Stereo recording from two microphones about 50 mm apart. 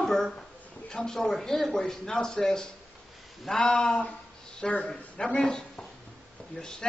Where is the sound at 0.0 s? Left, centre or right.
Centre.